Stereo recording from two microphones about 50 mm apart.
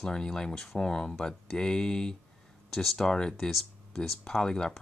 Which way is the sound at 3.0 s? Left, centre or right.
Centre.